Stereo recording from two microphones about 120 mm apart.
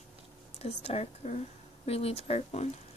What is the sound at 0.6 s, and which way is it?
A woman's voice, 60° left (ahead or behind).